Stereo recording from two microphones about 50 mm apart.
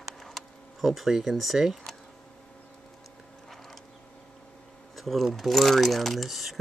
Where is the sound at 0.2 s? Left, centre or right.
Centre.